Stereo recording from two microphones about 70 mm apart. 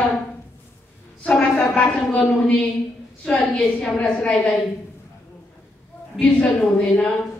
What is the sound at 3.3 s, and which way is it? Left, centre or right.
Speech, centre.